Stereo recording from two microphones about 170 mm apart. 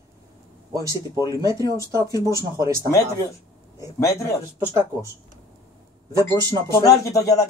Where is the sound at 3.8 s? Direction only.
20° left (ahead or behind).